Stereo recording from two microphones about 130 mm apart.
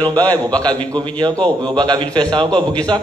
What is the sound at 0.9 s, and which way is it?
A man's voice, 35° right (ahead or behind).